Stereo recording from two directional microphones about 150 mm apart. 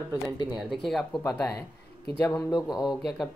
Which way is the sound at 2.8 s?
Centre (ahead or behind).